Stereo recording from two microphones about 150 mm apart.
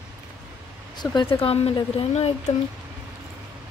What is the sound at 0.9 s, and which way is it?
Speech, 35° left (ahead or behind).